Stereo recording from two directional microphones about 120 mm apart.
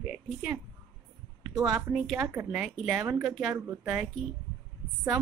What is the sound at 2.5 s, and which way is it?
Speech, 5° right (ahead or behind).